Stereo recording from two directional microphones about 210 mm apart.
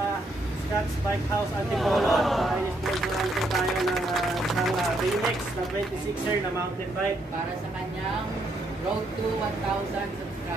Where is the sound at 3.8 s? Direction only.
Centre (ahead or behind).